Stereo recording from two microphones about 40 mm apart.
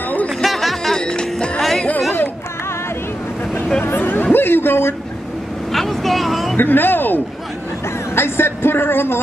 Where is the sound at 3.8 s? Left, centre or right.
Left.